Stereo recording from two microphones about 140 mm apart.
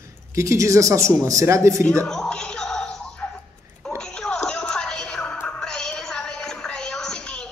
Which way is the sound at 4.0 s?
5° left (ahead or behind).